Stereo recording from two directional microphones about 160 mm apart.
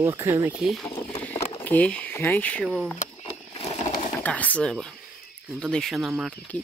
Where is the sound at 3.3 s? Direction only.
35° left (ahead or behind).